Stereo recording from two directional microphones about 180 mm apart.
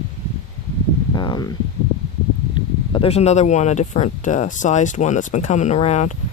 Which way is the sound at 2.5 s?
30° left (ahead or behind).